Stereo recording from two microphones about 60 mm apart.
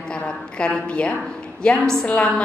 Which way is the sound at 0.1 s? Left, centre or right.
Centre.